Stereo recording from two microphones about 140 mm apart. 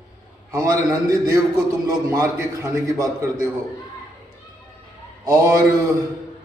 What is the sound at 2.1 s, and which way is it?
A man's voice, 20° right (ahead or behind).